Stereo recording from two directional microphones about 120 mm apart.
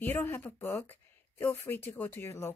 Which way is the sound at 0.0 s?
20° left (ahead or behind).